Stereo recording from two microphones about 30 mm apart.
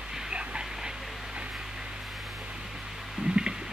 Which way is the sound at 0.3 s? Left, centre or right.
Right.